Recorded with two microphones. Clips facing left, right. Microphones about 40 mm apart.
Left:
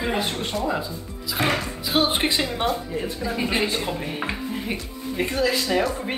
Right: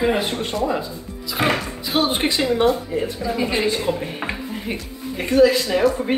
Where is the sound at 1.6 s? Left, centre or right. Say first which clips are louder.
Right 1 dB; centre.